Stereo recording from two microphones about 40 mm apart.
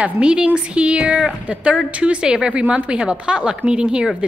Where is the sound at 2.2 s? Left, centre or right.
Right.